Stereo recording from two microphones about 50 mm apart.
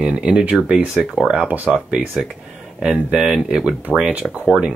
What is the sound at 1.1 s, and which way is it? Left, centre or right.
Speech, centre.